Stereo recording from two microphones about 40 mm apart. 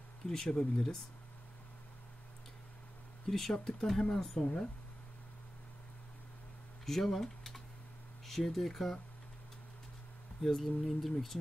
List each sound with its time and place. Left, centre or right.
0.3 s speech: centre
3.3 s speech: centre
6.9 s speech: centre
10.4 s speech: centre